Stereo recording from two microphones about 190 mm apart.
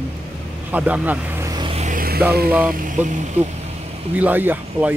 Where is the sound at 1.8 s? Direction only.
45° right (ahead or behind).